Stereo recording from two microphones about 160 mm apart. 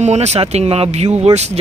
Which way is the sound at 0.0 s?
45° right (ahead or behind).